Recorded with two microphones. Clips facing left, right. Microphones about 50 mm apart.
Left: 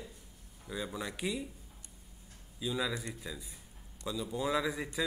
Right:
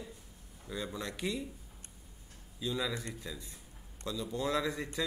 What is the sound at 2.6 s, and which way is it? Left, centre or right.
Speech, centre.